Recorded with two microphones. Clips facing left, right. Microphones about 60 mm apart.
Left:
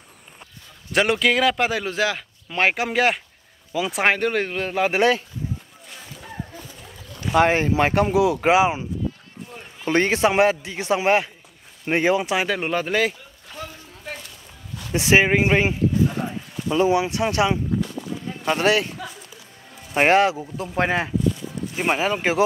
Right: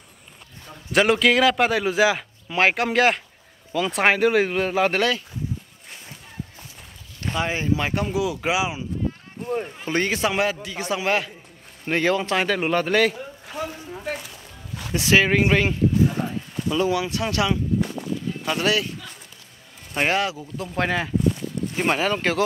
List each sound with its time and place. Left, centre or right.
0.9 s a man's voice: centre
7.3 s speech: left
9.8 s a man's voice: left; by 13.1 s centre
13.6 s a sound: centre
14.0 s music: centre
15.0 s speech: left
16.2 s a man's voice: centre
16.7 s speech: left
21.7 s speech: centre